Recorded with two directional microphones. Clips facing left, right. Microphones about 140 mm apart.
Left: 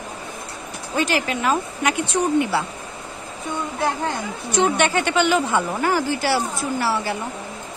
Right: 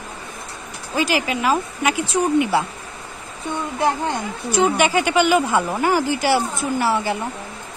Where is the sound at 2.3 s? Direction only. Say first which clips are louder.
Right 3 dB; 15° right (ahead or behind).